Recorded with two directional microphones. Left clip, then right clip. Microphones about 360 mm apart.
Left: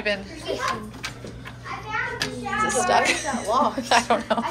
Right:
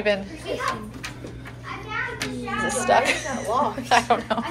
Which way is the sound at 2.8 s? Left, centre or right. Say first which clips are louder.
Right 3 dB; centre.